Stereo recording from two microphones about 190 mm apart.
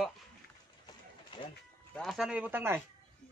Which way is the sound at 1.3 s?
25° left (ahead or behind).